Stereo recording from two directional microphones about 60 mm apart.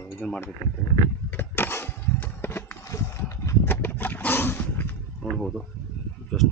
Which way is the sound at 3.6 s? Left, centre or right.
Left.